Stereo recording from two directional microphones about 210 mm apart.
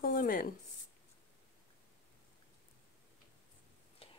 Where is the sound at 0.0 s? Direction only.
45° left (ahead or behind).